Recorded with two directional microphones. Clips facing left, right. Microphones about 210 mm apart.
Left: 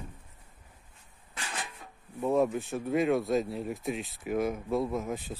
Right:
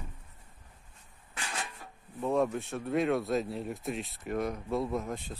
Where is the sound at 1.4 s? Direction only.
Centre (ahead or behind).